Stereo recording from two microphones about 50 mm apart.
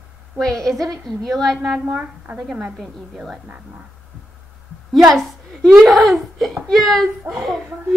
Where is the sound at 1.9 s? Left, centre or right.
Right.